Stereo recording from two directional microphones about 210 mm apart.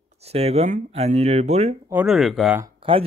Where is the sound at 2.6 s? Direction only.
25° right (ahead or behind).